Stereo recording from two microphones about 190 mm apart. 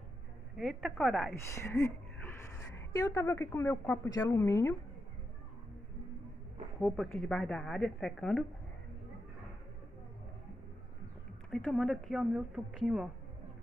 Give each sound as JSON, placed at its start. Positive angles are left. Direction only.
{"t": 0.6, "sound": "speech", "side_deg": 0}
{"t": 1.5, "sound": "a woman's voice", "side_deg": 15}
{"t": 6.8, "sound": "speech", "side_deg": 5}
{"t": 11.5, "sound": "speech", "side_deg": 5}